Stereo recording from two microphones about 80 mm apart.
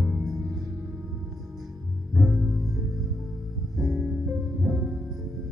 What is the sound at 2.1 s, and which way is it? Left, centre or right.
Music, centre.